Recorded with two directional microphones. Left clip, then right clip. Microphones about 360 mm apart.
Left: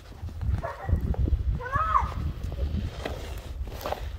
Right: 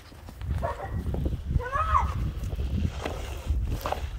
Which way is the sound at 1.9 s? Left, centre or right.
Right.